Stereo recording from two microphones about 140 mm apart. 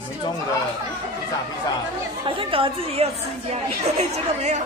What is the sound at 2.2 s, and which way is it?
A woman's voice, 40° right (ahead or behind).